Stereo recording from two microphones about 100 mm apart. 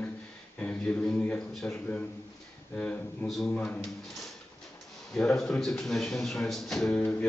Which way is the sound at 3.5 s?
15° left (ahead or behind).